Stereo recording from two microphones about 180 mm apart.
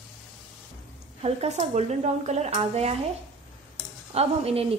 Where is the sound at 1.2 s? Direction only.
35° right (ahead or behind).